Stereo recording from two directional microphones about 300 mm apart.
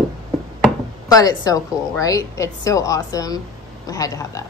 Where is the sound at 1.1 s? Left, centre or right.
Centre.